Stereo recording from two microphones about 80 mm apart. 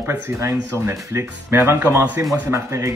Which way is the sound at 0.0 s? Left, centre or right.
Right.